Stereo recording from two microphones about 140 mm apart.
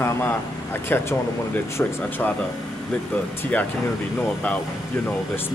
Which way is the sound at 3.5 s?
10° left (ahead or behind).